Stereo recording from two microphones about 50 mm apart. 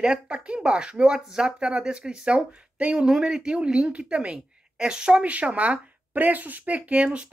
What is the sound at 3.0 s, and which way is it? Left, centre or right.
Speech, centre.